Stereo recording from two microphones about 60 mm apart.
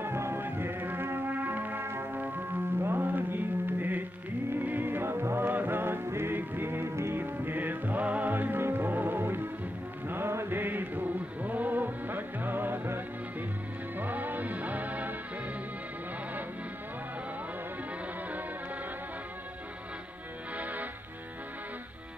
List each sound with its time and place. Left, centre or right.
0.0 s music: right
20.5 s music: right